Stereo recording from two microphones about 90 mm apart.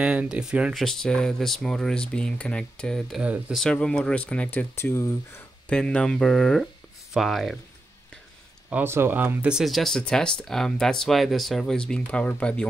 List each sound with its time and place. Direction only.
0.0 s speech: 10° right (ahead or behind)
0.7 s speech: 5° left (ahead or behind)
3.2 s speech: 15° right (ahead or behind)
3.7 s speech: 10° left (ahead or behind); by 5.1 s 30° left (ahead or behind)
5.7 s speech: 10° left (ahead or behind)
8.8 s speech: 25° right (ahead or behind)
9.5 s speech: 5° right (ahead or behind)